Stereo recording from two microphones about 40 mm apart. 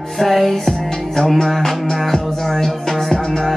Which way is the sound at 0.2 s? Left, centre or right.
Centre.